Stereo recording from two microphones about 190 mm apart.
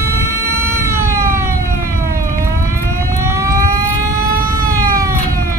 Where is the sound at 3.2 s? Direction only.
15° right (ahead or behind).